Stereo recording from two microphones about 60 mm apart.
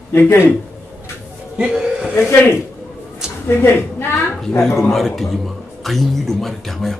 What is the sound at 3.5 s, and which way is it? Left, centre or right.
Speech, left.